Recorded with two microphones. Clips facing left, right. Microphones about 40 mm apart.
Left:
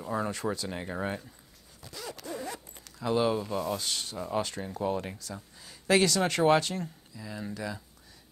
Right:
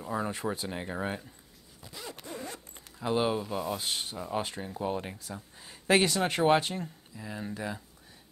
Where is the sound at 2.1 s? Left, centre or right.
Right.